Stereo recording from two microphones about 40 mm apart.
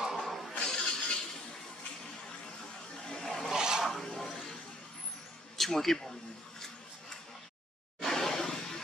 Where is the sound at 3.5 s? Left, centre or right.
Centre.